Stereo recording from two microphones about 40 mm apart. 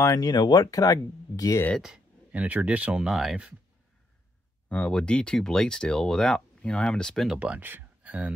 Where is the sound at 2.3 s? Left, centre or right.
Right.